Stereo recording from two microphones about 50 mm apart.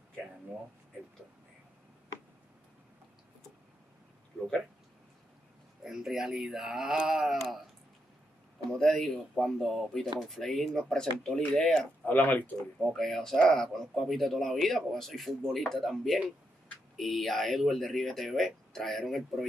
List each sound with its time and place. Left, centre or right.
5.9 s speech: centre
8.7 s speech: centre
12.1 s speech: left
12.9 s speech: centre